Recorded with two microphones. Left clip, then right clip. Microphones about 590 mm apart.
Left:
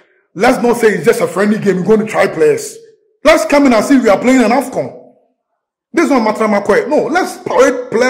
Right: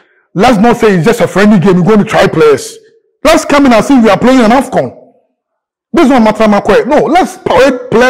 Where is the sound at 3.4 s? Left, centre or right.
Right.